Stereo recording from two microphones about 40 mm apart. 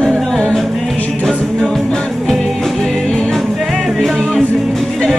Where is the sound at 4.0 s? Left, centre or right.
Centre.